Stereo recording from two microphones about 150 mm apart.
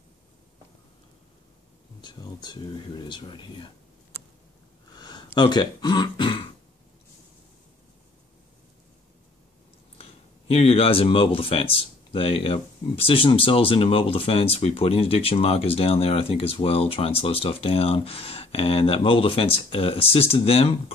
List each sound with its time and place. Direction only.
2.0 s speech: 30° left (ahead or behind)
4.9 s speech: 30° left (ahead or behind)
10.5 s speech: 40° left (ahead or behind)